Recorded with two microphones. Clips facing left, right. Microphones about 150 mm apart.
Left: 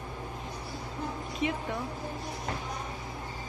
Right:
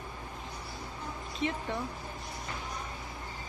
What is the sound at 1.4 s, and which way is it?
Speech, 10° left (ahead or behind).